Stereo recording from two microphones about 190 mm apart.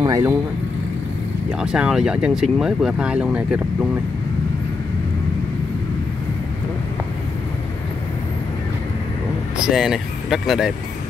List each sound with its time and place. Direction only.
0.0 s speech: 15° right (ahead or behind)
1.6 s speech: 5° right (ahead or behind)
9.7 s speech: centre (ahead or behind)